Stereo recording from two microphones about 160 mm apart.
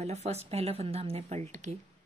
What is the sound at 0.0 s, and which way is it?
A woman's voice, 45° right (ahead or behind).